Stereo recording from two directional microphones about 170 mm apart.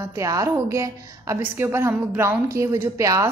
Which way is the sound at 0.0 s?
20° right (ahead or behind).